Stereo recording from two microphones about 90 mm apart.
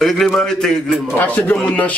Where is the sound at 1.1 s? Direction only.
20° left (ahead or behind).